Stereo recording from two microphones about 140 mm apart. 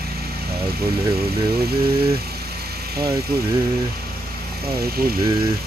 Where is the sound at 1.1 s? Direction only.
90° right.